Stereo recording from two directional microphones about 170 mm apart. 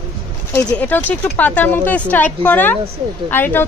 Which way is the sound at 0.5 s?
10° left (ahead or behind).